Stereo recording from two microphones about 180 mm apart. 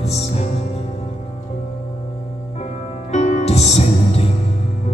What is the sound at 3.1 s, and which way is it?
Music, 40° left (ahead or behind).